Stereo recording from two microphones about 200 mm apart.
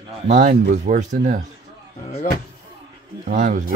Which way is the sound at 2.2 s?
40° left (ahead or behind).